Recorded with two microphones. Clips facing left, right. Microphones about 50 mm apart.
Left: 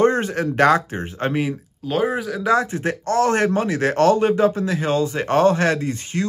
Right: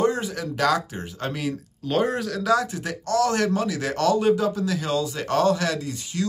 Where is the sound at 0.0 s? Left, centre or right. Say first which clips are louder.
Left 6 dB; left.